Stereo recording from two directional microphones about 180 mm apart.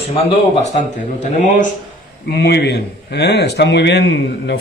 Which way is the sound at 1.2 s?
45° left (ahead or behind).